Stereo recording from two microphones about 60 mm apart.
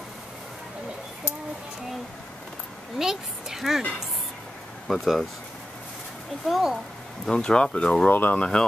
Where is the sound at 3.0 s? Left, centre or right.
Centre.